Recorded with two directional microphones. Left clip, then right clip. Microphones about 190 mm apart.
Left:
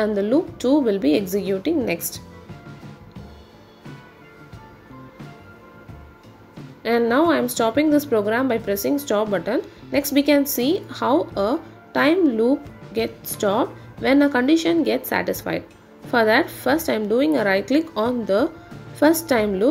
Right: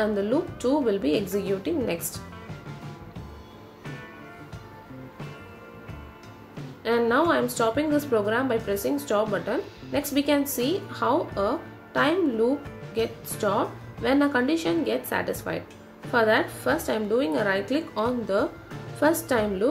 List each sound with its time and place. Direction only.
0.0 s a woman's voice: 30° left (ahead or behind)
6.8 s a woman's voice: 35° left (ahead or behind)